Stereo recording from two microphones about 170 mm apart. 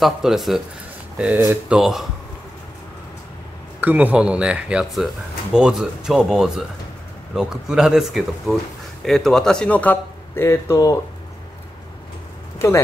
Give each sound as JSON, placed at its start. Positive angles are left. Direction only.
{"t": 0.0, "sound": "speech", "side_deg": 0}
{"t": 3.8, "sound": "a man's voice", "side_deg": -10}
{"t": 12.5, "sound": "speech", "side_deg": 15}